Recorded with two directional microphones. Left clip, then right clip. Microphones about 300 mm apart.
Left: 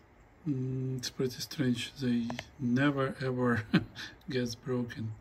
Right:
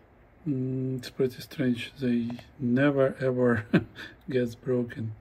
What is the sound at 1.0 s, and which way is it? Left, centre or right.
A man's voice, centre.